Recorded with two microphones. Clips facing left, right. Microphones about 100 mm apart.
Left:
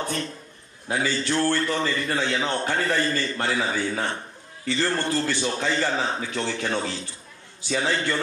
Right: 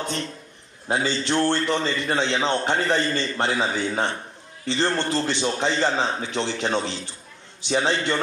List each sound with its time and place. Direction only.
0.0 s a man's voice: 20° right (ahead or behind)